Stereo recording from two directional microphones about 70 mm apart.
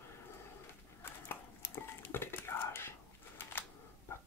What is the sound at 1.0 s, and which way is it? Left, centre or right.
Whispering, left.